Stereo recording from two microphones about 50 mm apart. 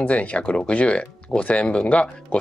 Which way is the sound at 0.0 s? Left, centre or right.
Left.